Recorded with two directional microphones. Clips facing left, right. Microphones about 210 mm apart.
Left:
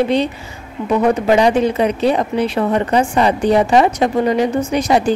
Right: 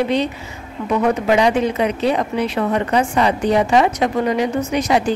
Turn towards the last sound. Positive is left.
turn(degrees=30)  # may be behind; listen again after turning